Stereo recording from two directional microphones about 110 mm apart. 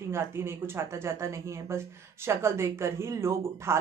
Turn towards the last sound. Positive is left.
turn(degrees=-25)  # may be behind; listen again after turning